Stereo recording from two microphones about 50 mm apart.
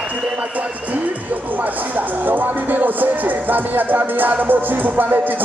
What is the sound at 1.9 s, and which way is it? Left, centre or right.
Music, right.